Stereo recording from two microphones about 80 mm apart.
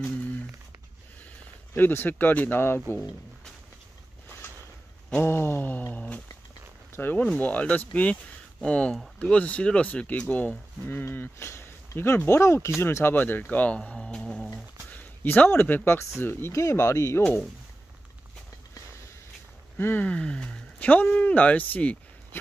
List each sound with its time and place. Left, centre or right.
1.8 s speech: left
5.2 s a sound: left
7.2 s speech: centre
8.9 s speech: centre
9.3 s speech: centre
10.9 s speech: left
13.7 s music: centre
14.5 s speech: left
19.8 s speech: left